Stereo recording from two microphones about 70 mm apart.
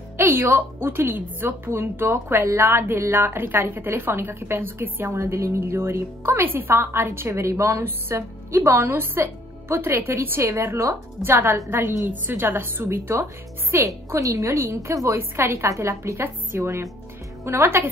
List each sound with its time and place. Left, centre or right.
0.2 s speech: right
5.1 s speech: right
14.1 s a woman's voice: right